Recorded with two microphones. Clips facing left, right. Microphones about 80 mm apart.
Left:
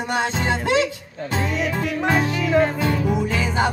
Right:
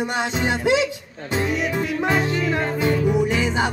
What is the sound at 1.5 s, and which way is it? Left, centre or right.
Music, centre.